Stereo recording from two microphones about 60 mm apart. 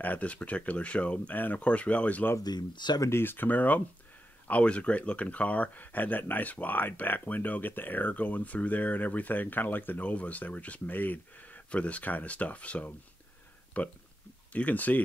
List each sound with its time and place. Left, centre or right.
0.0 s speech: left
3.1 s speech: left